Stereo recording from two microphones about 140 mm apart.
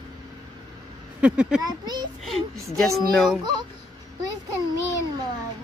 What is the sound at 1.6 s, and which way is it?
Speech, 30° right (ahead or behind).